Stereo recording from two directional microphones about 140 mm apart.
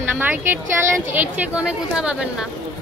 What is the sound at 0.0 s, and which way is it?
A woman's voice, 15° right (ahead or behind).